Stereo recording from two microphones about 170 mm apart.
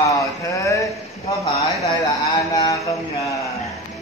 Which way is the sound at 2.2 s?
20° left (ahead or behind).